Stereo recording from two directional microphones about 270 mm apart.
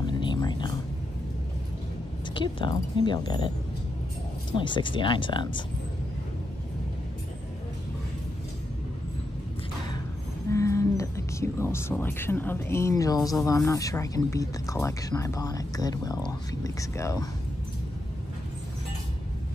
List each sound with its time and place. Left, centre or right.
0.0 s a sound: centre
2.3 s speech: centre
4.6 s speech: centre
10.5 s speech: centre